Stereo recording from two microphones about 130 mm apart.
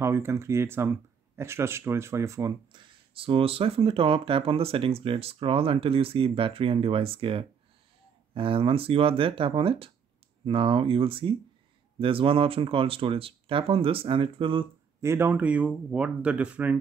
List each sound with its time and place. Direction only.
0.0 s speech: 20° right (ahead or behind)
2.7 s speech: 40° right (ahead or behind)
15.0 s speech: 20° right (ahead or behind)